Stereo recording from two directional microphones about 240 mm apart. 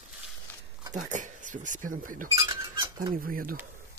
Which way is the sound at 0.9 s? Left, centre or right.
Right.